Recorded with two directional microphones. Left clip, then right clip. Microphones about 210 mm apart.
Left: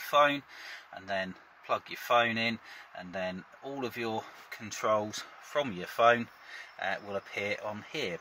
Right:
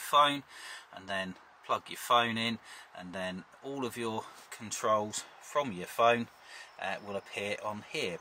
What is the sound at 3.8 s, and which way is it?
Speech, 20° left (ahead or behind).